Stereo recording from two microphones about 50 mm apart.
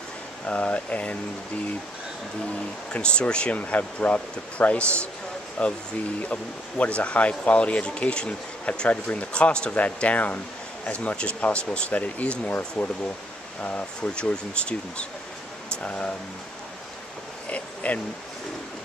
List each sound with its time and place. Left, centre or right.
0.5 s speech: left
2.9 s speech: left
3.5 s speech: left
17.5 s a sound: left